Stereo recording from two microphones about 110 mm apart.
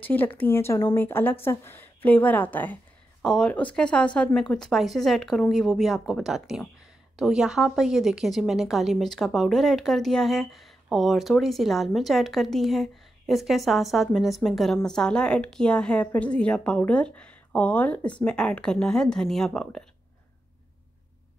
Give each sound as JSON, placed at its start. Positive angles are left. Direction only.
{"t": 0.0, "sound": "a woman's voice", "side_deg": 15}